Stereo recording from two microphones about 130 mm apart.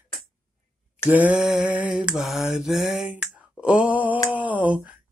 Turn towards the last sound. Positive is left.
turn(degrees=-10)  # may be behind; listen again after turning